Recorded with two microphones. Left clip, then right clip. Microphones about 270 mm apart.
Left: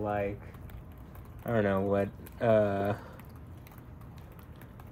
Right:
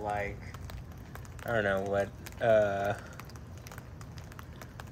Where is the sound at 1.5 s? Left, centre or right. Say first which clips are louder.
Left 1 dB; centre.